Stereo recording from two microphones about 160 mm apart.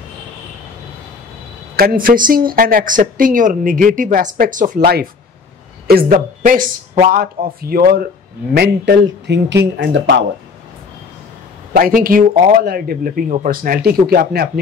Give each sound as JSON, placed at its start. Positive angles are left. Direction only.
{"t": 1.8, "sound": "speech", "side_deg": -65}
{"t": 8.5, "sound": "speech", "side_deg": -90}
{"t": 11.7, "sound": "speech", "side_deg": -65}